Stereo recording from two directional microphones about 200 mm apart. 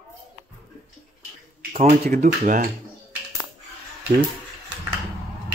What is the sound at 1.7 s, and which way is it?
Speech, 35° right (ahead or behind).